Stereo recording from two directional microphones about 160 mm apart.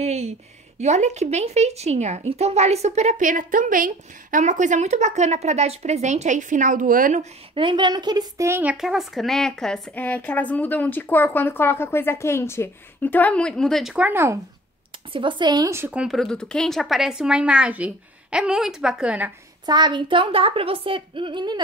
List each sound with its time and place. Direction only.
0.0 s a sound: 45° right (ahead or behind)
0.7 s a woman's voice: 45° right (ahead or behind)
7.5 s a woman's voice: 30° right (ahead or behind); by 8.7 s 15° right (ahead or behind)
8.7 s a woman's voice: centre (ahead or behind)
15.1 s speech: 30° right (ahead or behind); by 19.3 s 10° right (ahead or behind)
19.6 s a woman's voice: 25° right (ahead or behind)